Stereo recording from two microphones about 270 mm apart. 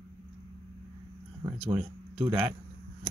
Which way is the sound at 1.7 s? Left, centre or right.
Centre.